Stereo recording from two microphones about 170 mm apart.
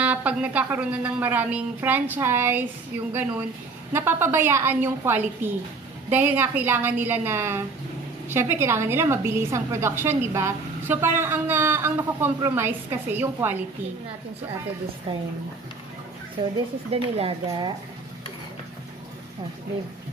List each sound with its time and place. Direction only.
0.0 s a woman's voice: 10° right (ahead or behind)
15.1 s speech: 35° right (ahead or behind)
16.9 s speech: 35° right (ahead or behind)